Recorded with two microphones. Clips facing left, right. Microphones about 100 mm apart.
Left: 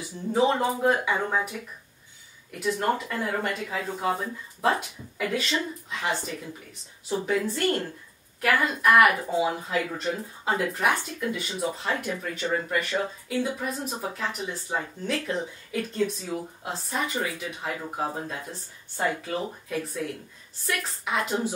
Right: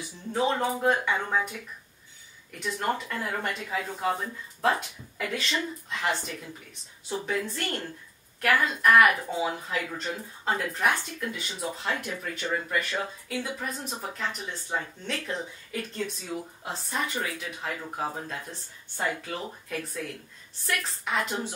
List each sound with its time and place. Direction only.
0.0 s speech: 5° left (ahead or behind)
2.6 s speech: centre (ahead or behind)
3.1 s speech: 20° left (ahead or behind)
4.7 s speech: 5° left (ahead or behind)